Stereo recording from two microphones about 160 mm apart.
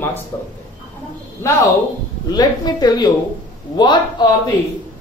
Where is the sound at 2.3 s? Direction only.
25° left (ahead or behind).